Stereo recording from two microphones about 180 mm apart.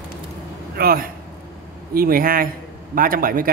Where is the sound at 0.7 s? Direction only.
55° right (ahead or behind).